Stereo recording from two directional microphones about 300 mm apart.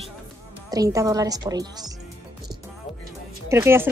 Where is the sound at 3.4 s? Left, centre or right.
Centre.